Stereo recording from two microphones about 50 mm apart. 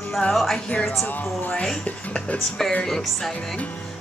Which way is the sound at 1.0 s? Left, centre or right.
Left.